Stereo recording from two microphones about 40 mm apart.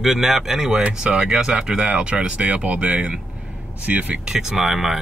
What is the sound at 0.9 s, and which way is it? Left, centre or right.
Speech, right.